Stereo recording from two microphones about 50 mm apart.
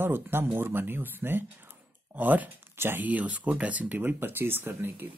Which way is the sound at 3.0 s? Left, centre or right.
Right.